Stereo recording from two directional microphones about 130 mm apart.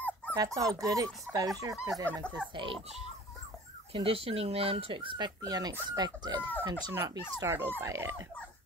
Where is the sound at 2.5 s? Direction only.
45° right (ahead or behind).